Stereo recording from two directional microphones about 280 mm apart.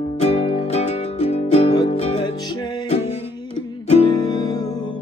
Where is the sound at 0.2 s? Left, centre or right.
Centre.